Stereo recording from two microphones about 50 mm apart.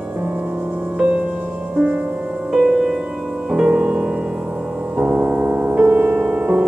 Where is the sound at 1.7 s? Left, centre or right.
Right.